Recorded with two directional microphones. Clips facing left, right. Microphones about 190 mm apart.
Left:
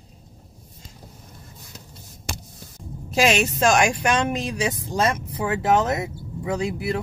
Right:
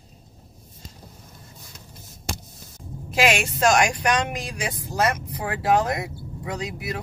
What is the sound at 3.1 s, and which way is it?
Speech, 25° left (ahead or behind).